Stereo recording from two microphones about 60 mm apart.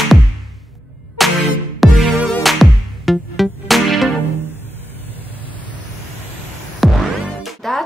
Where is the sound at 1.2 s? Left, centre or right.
Centre.